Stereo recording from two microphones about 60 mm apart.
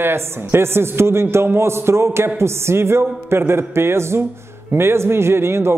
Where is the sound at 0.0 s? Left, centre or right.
Right.